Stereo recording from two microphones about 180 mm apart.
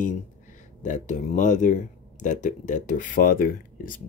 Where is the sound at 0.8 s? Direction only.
45° left (ahead or behind).